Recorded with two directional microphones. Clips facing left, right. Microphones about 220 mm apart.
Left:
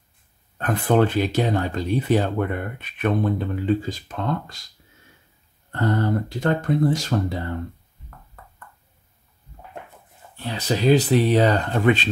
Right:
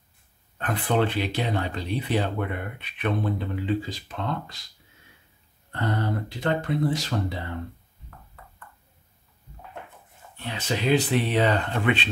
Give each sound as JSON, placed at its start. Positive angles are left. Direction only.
{"t": 0.6, "sound": "speech", "side_deg": 45}
{"t": 5.7, "sound": "speech", "side_deg": 45}
{"t": 10.3, "sound": "speech", "side_deg": 35}